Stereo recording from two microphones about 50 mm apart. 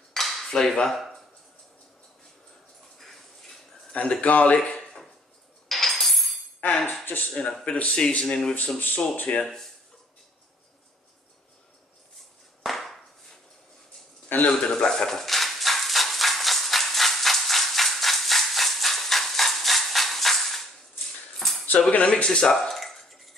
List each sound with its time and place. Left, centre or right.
0.1 s cutlery: centre
0.5 s speech: centre
3.0 s a sound: centre
3.9 s speech: left
5.7 s coin: centre
6.6 s speech: left
7.6 s speech: left
8.7 s speech: left
12.6 s a sound: centre
14.4 s speech: centre
14.9 s maraca: centre
21.4 s cutlery: centre
22.1 s speech: centre